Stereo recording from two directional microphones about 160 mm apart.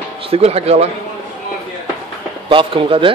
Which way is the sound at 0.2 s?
40° right (ahead or behind).